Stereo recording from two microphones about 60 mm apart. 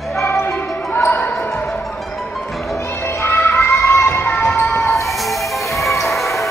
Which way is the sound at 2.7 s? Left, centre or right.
Left.